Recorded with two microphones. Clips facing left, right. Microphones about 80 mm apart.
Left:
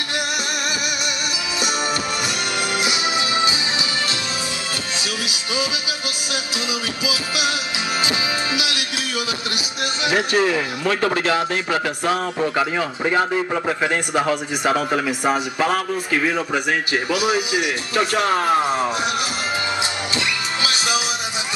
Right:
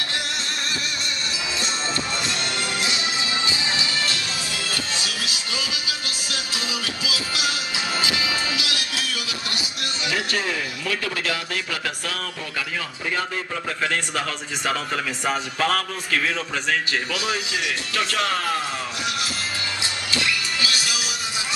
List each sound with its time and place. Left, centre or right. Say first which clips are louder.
2.8 s music: left 5 dB; centre
7.1 s a man's voice: left 4 dB; left
8.0 s music: left 2 dB; left
10.9 s a man's voice: left 8 dB; left
13.7 s a man's voice: left 5 dB; left
20.6 s music: left 5 dB; left